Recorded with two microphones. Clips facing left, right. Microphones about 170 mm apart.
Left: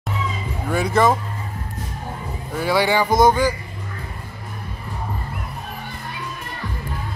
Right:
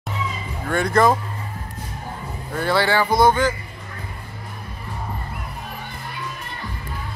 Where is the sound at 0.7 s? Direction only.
5° left (ahead or behind).